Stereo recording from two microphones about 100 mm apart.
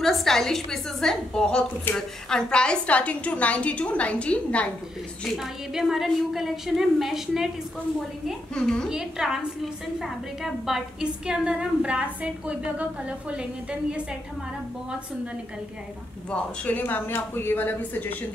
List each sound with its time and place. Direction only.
0.0 s a woman's voice: 5° left (ahead or behind)
5.2 s a woman's voice: centre (ahead or behind)
8.9 s a woman's voice: 5° right (ahead or behind)
16.3 s a woman's voice: 15° left (ahead or behind)